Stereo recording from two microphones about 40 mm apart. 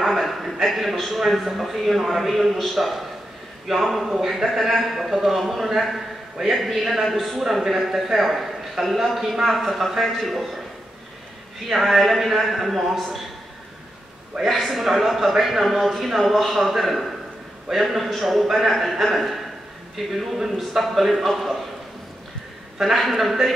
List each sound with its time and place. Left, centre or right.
0.0 s a sound: centre
0.7 s a man's voice: centre
11.7 s a man's voice: centre
14.5 s a man's voice: centre
22.8 s a man's voice: centre